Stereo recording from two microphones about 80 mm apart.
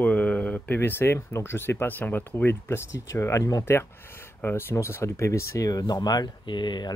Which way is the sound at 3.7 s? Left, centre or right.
Left.